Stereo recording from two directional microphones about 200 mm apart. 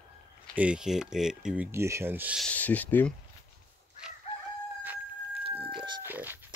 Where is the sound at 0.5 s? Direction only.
5° right (ahead or behind).